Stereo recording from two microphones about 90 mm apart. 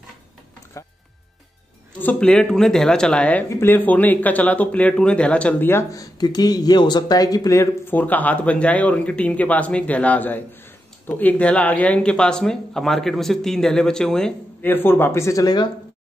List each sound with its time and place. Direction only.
2.0 s speech: 15° left (ahead or behind)
3.4 s speech: 30° left (ahead or behind)
5.9 s speech: 45° left (ahead or behind)
7.9 s speech: 20° left (ahead or behind)
14.6 s speech: 25° left (ahead or behind)